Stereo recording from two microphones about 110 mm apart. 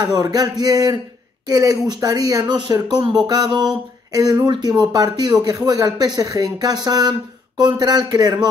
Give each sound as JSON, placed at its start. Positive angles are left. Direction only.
{"t": 0.0, "sound": "speech", "side_deg": -35}